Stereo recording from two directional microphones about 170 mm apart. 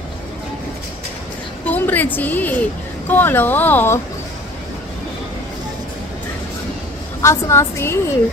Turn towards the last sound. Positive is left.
turn(degrees=15)  # may be behind; listen again after turning